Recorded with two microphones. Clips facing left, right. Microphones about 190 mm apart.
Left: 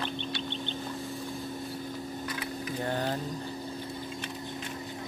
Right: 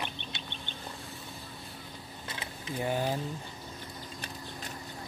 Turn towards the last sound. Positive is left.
turn(degrees=-10)  # may be behind; listen again after turning